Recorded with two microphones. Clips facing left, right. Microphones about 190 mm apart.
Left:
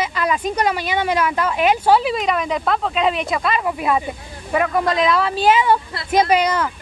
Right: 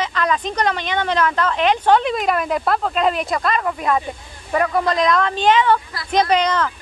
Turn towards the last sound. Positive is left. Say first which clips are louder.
# left 1 dB
turn(degrees=10)  # may be behind; listen again after turning